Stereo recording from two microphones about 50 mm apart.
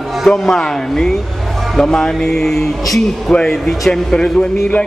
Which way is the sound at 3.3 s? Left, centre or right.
Centre.